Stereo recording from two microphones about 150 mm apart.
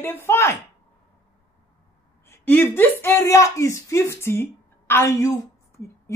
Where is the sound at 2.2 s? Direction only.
15° left (ahead or behind).